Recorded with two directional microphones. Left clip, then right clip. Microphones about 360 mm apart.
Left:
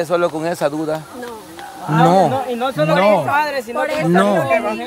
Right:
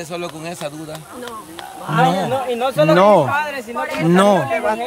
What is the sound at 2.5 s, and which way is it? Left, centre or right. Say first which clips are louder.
Speech: right 2 dB; right.